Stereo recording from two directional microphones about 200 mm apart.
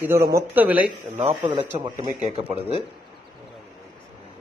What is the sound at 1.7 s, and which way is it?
Speech, 30° right (ahead or behind).